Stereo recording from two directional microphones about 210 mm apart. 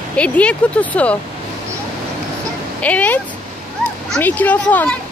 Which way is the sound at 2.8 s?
5° left (ahead or behind).